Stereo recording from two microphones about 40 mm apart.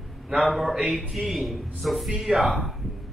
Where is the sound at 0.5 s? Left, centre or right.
Centre.